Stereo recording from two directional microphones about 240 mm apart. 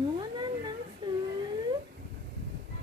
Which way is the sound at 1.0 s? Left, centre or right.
Centre.